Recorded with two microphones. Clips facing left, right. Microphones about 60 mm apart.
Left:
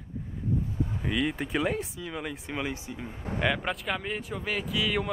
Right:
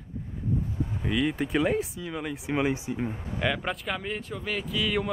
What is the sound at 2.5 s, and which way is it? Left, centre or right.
Speech, centre.